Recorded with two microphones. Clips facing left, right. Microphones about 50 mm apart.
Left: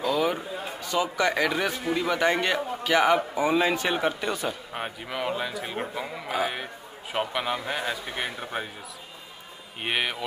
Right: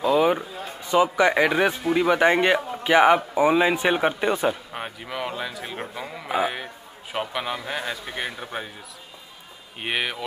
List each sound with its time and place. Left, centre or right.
0.0 s a sound: right
0.7 s a man's voice: right
4.7 s a man's voice: centre
6.2 s a man's voice: centre
6.5 s a man's voice: centre
9.8 s a man's voice: centre